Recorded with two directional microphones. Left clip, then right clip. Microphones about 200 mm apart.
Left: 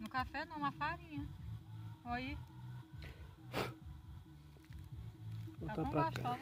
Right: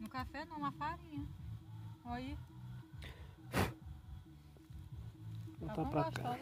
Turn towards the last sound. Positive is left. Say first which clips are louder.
# left 1 dB
turn(degrees=0)  # may be behind; listen again after turning